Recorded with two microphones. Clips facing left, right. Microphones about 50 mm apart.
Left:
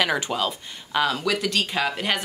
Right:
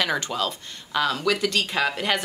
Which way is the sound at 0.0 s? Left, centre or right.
Centre.